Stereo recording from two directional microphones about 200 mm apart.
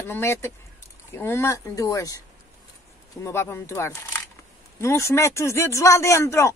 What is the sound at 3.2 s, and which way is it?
Speech, 15° left (ahead or behind).